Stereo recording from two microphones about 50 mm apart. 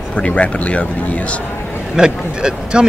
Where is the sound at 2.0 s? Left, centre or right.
Centre.